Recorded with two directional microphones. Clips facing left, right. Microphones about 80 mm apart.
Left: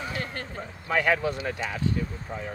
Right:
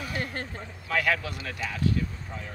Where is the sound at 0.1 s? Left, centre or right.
Right.